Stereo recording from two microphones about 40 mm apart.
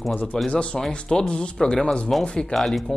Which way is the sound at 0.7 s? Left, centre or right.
Centre.